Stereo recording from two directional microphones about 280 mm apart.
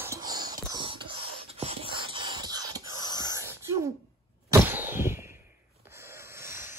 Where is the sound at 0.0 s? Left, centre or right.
Centre.